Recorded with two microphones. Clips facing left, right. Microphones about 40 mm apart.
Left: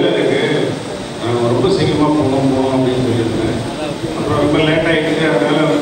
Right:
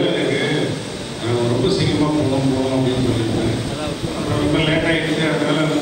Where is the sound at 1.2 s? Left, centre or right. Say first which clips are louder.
Left 4 dB; left.